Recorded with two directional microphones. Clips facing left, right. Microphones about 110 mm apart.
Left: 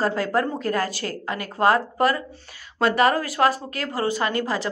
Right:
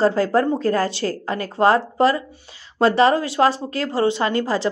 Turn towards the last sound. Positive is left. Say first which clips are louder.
# right 4 dB
turn(degrees=-30)  # may be behind; listen again after turning